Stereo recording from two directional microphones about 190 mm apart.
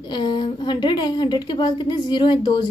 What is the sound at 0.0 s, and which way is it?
A woman's voice, 25° left (ahead or behind).